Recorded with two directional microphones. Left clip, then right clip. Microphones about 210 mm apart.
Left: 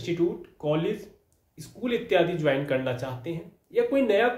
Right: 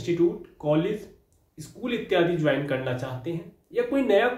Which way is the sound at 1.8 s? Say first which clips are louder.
Even; 25° left (ahead or behind).